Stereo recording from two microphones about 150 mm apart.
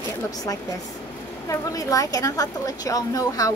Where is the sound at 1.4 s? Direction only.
20° left (ahead or behind).